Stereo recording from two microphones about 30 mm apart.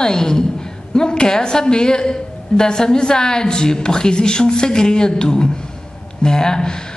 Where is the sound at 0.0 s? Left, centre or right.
Left.